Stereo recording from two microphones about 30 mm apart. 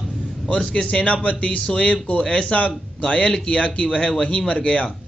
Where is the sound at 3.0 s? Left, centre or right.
Left.